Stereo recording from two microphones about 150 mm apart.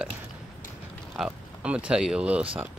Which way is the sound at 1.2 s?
5° right (ahead or behind).